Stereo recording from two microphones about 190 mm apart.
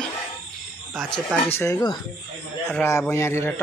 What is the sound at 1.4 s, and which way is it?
Speech, 15° left (ahead or behind).